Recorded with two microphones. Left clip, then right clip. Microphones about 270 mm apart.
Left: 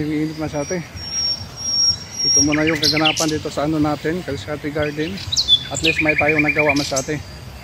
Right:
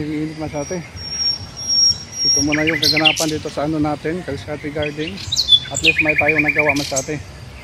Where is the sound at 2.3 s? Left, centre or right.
Centre.